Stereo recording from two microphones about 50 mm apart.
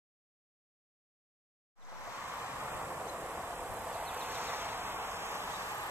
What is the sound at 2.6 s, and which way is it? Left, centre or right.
Vehicle, right.